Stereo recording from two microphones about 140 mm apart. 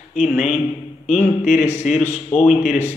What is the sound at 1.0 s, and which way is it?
Speech, 55° left (ahead or behind).